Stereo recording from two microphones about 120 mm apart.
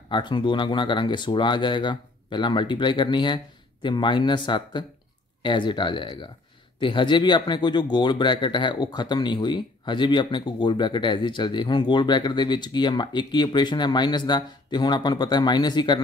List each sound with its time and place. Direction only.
0.1 s speech: 40° left (ahead or behind)